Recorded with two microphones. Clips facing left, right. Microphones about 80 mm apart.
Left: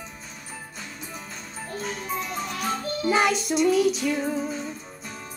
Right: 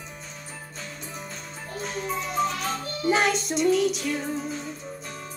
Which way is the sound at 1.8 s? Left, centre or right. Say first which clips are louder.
Right 1 dB; centre.